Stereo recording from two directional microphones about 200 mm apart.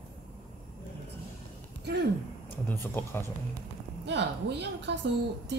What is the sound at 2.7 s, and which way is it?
Speech, 10° left (ahead or behind).